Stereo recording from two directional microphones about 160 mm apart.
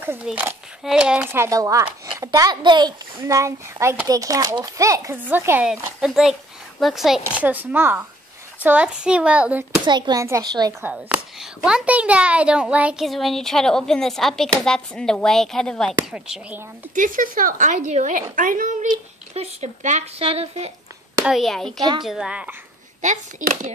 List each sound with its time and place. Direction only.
0.0 s a child's voice: 10° right (ahead or behind)
9.8 s a child's voice: 25° right (ahead or behind)
10.8 s a woman's voice: 15° right (ahead or behind); by 16.0 s 5° left (ahead or behind)
16.1 s speech: 5° right (ahead or behind)
16.9 s speech: 55° right (ahead or behind)
19.3 s speech: 45° right (ahead or behind)
21.3 s a woman's voice: centre (ahead or behind)
23.0 s speech: 50° right (ahead or behind)